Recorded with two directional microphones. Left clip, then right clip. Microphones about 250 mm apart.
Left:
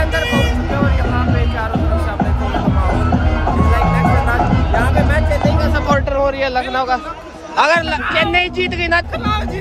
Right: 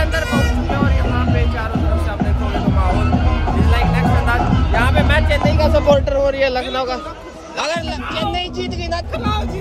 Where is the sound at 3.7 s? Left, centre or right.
Centre.